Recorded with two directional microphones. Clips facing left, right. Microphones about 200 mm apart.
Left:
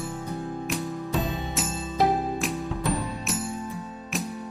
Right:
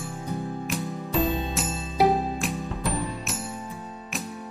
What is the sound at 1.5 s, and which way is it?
Music, centre (ahead or behind).